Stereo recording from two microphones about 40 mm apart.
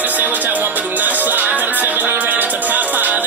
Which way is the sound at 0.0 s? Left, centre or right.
Right.